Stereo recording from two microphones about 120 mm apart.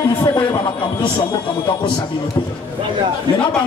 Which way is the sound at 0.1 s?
40° left (ahead or behind).